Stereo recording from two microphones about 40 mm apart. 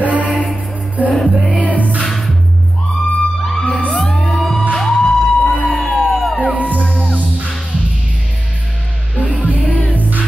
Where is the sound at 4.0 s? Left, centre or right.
Centre.